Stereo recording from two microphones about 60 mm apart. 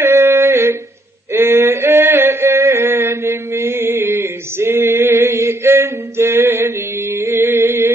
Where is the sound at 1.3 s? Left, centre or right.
Right.